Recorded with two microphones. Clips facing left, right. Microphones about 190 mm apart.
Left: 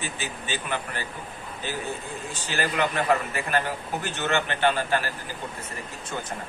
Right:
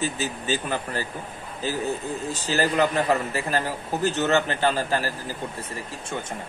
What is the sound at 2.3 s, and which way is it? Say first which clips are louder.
A man's voice: right 5 dB; 35° right (ahead or behind).